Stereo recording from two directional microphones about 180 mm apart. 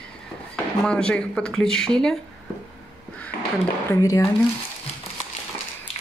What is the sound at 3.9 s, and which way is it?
Speech, 20° left (ahead or behind).